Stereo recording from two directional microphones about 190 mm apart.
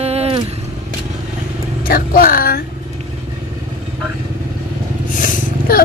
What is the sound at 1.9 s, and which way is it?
Speech, 50° left (ahead or behind).